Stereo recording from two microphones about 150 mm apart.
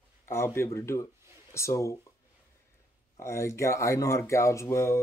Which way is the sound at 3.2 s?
20° left (ahead or behind).